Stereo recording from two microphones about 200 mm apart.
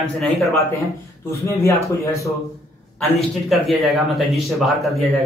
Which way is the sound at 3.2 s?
Centre (ahead or behind).